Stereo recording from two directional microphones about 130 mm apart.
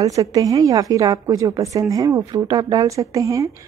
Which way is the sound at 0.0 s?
25° right (ahead or behind).